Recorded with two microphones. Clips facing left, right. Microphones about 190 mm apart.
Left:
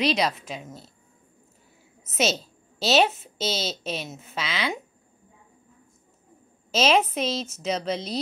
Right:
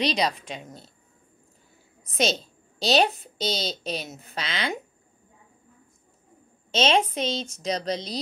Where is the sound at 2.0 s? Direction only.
5° left (ahead or behind).